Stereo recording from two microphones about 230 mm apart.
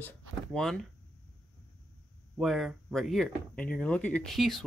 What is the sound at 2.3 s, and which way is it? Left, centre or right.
Speech, centre.